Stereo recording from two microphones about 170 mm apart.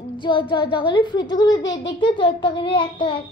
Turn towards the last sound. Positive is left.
turn(degrees=30)  # may be behind; listen again after turning